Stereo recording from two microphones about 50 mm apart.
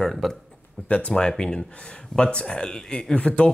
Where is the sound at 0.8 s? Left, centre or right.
Left.